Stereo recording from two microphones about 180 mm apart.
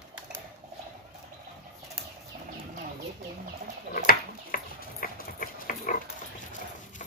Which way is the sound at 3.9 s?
55° left (ahead or behind).